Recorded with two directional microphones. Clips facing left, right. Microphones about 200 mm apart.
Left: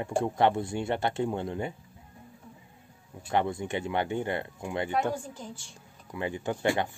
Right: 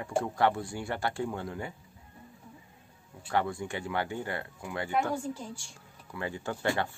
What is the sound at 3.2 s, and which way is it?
Speech, 20° left (ahead or behind).